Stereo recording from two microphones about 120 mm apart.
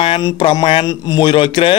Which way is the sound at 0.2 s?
35° left (ahead or behind).